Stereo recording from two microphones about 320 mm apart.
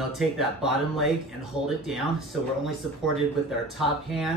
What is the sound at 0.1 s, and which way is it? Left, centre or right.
Speech, centre.